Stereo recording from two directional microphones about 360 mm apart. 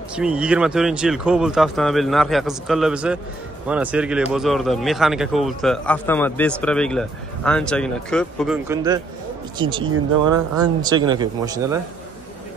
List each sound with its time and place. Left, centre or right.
0.1 s speech: centre